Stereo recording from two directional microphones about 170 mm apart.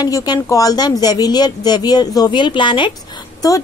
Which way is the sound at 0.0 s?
25° left (ahead or behind).